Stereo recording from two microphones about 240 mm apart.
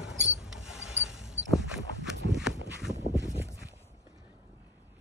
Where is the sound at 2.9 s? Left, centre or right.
Right.